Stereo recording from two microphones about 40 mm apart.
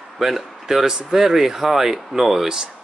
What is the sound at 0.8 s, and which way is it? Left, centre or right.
Speech, centre.